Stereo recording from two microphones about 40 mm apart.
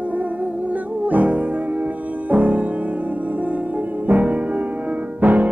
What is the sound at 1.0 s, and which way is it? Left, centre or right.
Music, right.